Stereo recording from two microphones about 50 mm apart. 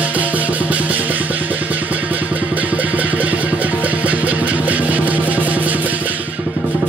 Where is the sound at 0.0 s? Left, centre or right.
Right.